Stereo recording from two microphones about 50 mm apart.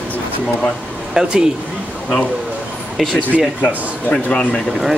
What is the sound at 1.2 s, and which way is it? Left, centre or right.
Speech, centre.